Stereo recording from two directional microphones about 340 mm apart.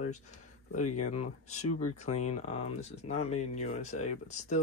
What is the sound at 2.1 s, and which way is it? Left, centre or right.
Speech, centre.